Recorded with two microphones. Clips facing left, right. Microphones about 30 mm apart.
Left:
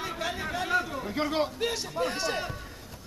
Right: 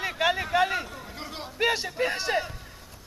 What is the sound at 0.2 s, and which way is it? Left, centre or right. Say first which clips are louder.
Chatter: right 10 dB; right.